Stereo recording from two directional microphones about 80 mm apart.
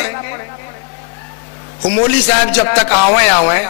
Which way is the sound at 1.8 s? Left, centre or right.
Centre.